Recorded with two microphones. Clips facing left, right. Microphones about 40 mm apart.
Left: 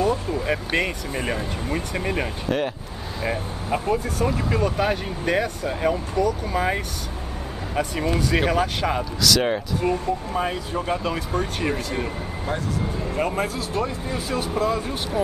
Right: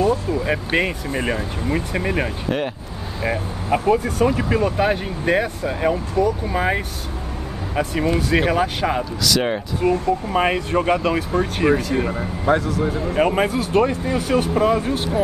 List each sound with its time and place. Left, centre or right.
0.3 s speech: centre
3.9 s speech: right
4.3 s speech: centre
10.3 s speech: right
11.0 s speech: right
11.3 s speech: centre
12.8 s speech: right